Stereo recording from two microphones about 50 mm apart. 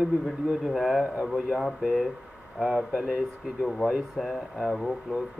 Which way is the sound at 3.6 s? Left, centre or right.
Centre.